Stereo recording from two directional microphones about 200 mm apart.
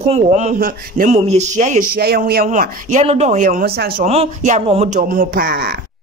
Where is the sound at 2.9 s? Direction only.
30° right (ahead or behind).